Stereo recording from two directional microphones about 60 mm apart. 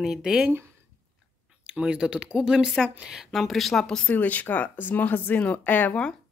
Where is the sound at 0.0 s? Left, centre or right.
Centre.